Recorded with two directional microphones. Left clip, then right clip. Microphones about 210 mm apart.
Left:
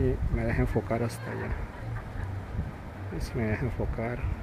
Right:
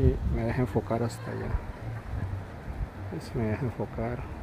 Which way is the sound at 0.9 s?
5° right (ahead or behind).